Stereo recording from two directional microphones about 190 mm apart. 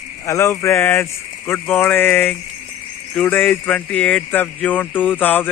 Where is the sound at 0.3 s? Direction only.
15° left (ahead or behind).